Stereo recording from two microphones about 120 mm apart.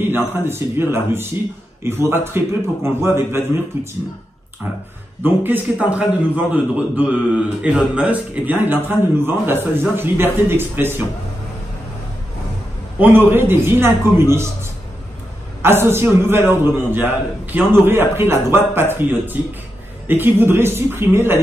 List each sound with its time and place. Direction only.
0.0 s a man's voice: 20° right (ahead or behind)
5.2 s a man's voice: 15° right (ahead or behind)
13.0 s a man's voice: 20° right (ahead or behind)
15.6 s a man's voice: 20° right (ahead or behind)